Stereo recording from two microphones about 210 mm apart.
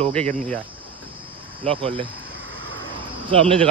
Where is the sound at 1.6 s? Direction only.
25° right (ahead or behind).